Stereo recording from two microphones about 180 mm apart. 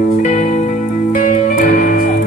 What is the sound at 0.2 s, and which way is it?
Music, 45° left (ahead or behind).